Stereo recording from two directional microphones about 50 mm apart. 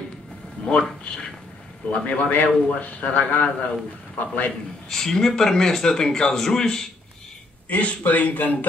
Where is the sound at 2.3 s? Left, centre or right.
Left.